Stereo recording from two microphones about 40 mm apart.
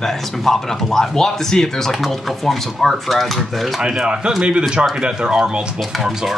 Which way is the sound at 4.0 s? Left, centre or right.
Right.